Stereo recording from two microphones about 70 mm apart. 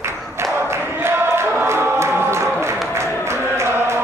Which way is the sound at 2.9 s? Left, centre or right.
Right.